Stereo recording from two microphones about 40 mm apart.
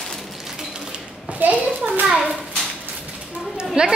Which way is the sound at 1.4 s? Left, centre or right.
Right.